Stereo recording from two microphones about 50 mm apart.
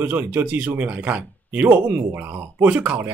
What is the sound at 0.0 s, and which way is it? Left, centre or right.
Speech, right.